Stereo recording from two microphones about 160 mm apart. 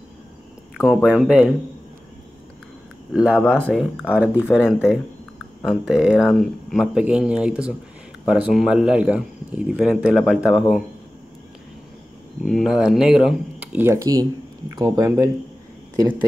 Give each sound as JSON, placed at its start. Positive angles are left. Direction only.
{"t": 0.7, "sound": "speech", "side_deg": -5}
{"t": 3.1, "sound": "speech", "side_deg": -5}
{"t": 3.3, "sound": "speech", "side_deg": 10}
{"t": 3.7, "sound": "speech", "side_deg": -5}
{"t": 12.4, "sound": "speech", "side_deg": 0}